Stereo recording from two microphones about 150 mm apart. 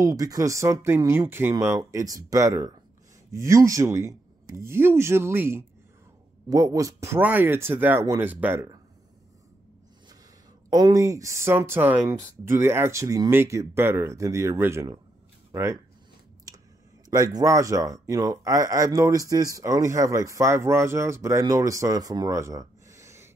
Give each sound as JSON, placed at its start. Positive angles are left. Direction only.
{"t": 0.0, "sound": "speech", "side_deg": -25}
{"t": 10.7, "sound": "speech", "side_deg": -25}
{"t": 17.1, "sound": "speech", "side_deg": -25}